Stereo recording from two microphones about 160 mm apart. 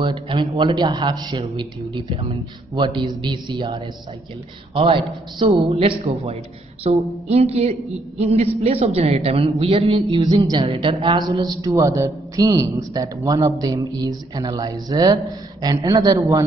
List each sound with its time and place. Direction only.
0.0 s a man's voice: 30° right (ahead or behind)